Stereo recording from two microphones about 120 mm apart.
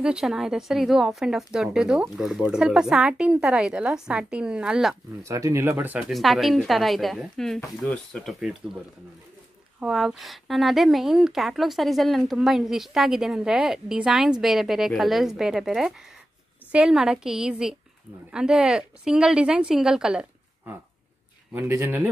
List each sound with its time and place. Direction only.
0.0 s a woman's voice: 5° right (ahead or behind)
5.2 s speech: 25° right (ahead or behind)
6.1 s a woman's voice: centre (ahead or behind)
9.8 s a woman's voice: 5° right (ahead or behind)
21.5 s speech: 20° right (ahead or behind)